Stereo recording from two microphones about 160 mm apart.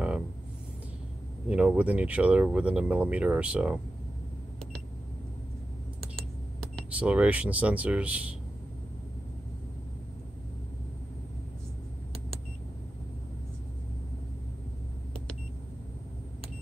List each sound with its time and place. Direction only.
1.5 s speech: 10° right (ahead or behind)
7.0 s speech: 10° right (ahead or behind)